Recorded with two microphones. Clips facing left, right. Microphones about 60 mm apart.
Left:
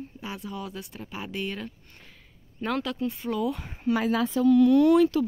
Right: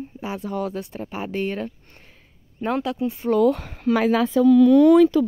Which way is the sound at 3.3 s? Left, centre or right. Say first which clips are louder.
Right 10 dB; right.